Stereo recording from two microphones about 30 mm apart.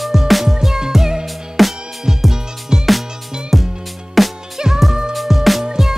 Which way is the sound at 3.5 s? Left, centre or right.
Centre.